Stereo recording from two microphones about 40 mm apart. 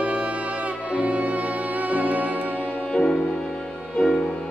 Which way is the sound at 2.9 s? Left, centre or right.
Left.